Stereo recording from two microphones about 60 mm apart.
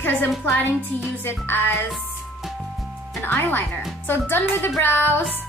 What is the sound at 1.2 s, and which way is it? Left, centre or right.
Speech, left.